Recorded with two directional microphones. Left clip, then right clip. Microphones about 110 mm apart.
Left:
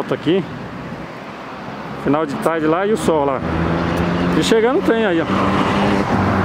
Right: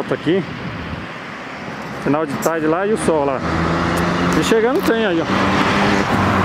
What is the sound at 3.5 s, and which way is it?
Vehicle, 40° right (ahead or behind).